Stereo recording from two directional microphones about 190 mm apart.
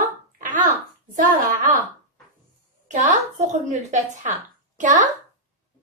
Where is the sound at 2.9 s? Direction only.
40° right (ahead or behind).